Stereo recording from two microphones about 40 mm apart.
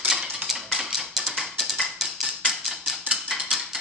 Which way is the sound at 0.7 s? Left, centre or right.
Centre.